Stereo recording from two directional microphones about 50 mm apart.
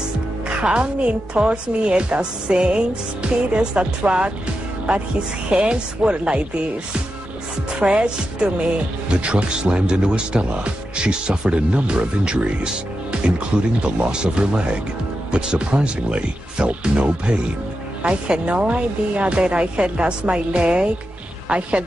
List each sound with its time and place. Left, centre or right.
0.7 s speech: right
7.8 s speech: right